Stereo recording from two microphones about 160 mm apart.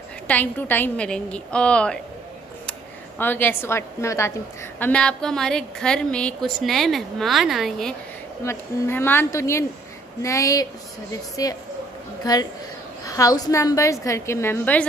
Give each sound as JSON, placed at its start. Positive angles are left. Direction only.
{"t": 0.3, "sound": "a woman's voice", "side_deg": 10}
{"t": 3.2, "sound": "a woman's voice", "side_deg": 15}
{"t": 8.5, "sound": "a woman's voice", "side_deg": 15}